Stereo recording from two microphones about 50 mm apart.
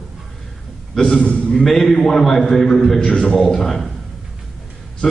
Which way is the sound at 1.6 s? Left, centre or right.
Centre.